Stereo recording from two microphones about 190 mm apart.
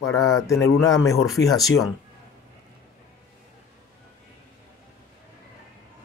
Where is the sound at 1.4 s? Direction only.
70° left (ahead or behind).